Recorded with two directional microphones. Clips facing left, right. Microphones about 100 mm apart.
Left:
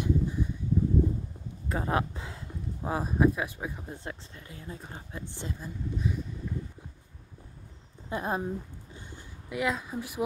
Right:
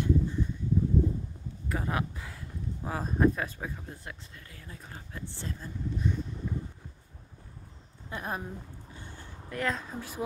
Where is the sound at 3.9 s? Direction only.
25° left (ahead or behind).